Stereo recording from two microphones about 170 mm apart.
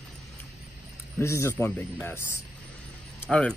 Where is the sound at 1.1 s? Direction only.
15° left (ahead or behind).